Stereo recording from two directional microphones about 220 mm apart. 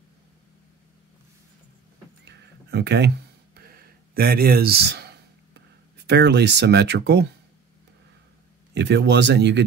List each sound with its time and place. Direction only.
2.2 s a sound: 50° right (ahead or behind)
6.0 s speech: 50° right (ahead or behind)
8.7 s speech: 50° right (ahead or behind)